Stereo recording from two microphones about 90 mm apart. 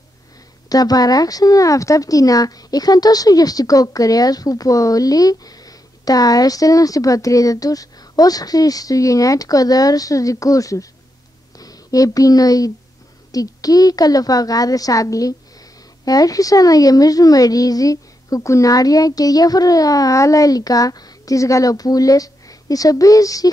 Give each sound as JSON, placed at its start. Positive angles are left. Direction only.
{"t": 0.7, "sound": "a woman's voice", "side_deg": 45}